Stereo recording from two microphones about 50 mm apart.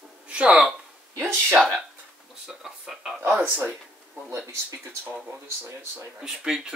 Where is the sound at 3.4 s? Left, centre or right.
Right.